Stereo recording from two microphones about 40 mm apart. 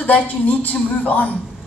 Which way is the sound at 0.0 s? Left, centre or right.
Left.